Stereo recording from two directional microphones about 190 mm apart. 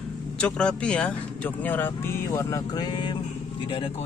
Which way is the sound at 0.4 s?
5° left (ahead or behind).